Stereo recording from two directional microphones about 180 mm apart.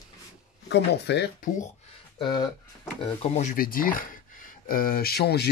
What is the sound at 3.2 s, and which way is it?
Speech, 40° left (ahead or behind).